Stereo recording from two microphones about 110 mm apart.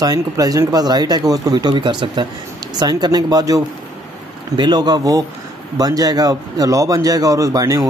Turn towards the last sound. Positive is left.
turn(degrees=-30)  # may be behind; listen again after turning